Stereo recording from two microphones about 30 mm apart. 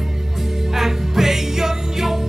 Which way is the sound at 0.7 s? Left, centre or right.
Centre.